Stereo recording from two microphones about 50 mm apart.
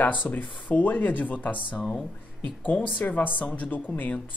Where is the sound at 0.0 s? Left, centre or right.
Left.